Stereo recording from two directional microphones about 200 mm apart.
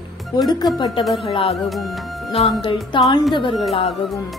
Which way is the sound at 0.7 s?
20° left (ahead or behind).